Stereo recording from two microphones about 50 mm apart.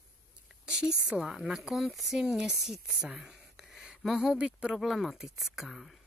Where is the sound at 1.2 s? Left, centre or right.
Centre.